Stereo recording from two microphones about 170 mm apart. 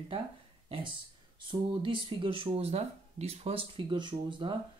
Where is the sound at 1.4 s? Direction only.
30° right (ahead or behind).